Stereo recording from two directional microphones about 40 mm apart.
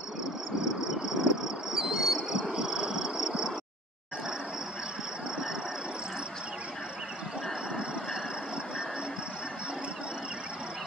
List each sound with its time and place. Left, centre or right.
1.0 s insect: centre